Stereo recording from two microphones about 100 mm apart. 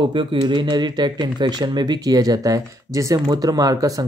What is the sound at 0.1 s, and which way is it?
Speech, 60° right (ahead or behind).